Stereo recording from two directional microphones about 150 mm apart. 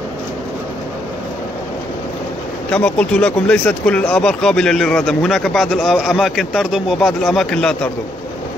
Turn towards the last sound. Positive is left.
turn(degrees=5)  # may be behind; listen again after turning